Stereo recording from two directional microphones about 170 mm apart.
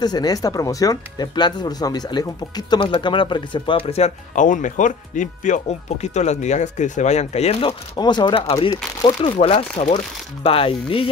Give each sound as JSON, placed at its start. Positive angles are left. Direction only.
{"t": 0.0, "sound": "speech", "side_deg": 25}
{"t": 7.9, "sound": "speech", "side_deg": 25}